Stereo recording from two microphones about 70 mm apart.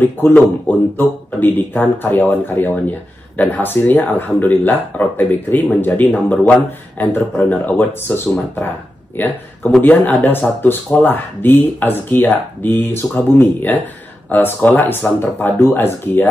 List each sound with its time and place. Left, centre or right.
0.0 s speech: left